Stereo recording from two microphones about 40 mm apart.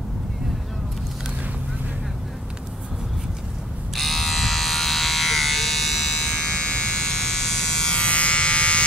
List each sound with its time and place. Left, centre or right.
3.9 s electric shaver: centre
6.2 s electric shaver: centre